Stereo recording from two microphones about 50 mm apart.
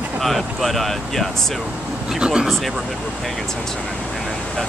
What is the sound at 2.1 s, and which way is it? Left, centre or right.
Speech, centre.